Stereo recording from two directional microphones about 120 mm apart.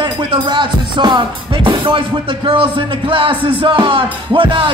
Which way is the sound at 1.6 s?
45° right (ahead or behind).